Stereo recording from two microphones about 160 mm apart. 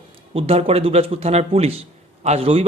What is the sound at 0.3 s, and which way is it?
A man's voice, 40° right (ahead or behind).